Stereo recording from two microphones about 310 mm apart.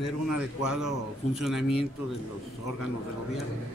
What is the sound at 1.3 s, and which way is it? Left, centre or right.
Speech, centre.